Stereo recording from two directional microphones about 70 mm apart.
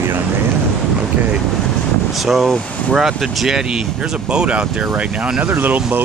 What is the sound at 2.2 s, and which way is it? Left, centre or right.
Speech, centre.